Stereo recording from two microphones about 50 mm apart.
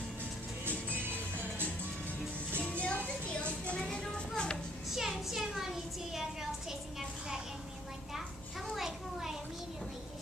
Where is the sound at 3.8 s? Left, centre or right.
Centre.